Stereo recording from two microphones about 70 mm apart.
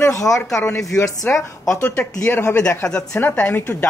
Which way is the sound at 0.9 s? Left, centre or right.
Left.